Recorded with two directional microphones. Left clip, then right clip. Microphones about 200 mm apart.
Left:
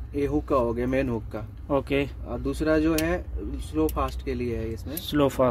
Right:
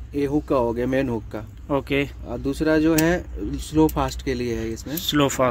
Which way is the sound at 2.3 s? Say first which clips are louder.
Right 3 dB; 40° right (ahead or behind).